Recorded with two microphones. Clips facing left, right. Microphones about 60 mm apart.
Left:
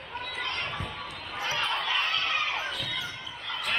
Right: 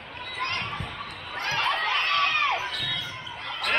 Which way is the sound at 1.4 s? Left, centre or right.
Right.